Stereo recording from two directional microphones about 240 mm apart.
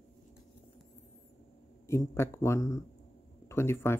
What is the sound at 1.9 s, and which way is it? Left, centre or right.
Speech, centre.